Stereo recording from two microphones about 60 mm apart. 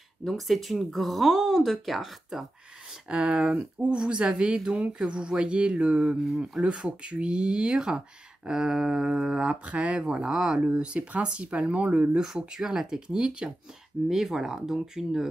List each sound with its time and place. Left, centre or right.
0.2 s speech: centre
3.1 s speech: centre